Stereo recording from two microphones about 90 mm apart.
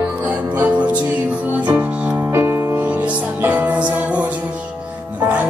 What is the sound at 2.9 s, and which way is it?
Music, 15° right (ahead or behind).